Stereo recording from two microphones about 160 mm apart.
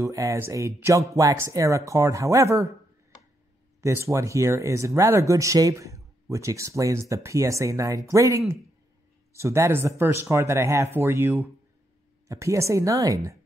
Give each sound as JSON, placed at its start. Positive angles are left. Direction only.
{"t": 0.0, "sound": "speech", "side_deg": -20}
{"t": 3.8, "sound": "speech", "side_deg": -20}